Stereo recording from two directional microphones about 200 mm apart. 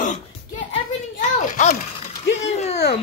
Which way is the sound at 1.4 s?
40° left (ahead or behind).